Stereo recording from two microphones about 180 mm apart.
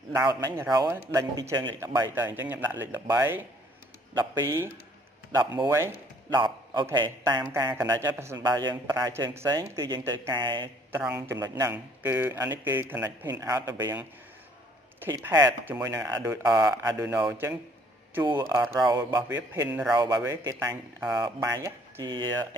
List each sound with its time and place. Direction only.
0.3 s a man's voice: 20° right (ahead or behind)
10.9 s speech: 10° right (ahead or behind)
15.0 s a man's voice: 15° right (ahead or behind)